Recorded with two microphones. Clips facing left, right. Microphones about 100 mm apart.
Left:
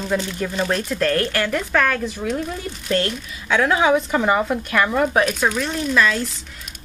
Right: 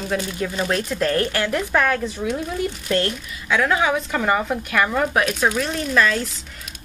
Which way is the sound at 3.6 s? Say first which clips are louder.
Left 3 dB; 20° left (ahead or behind).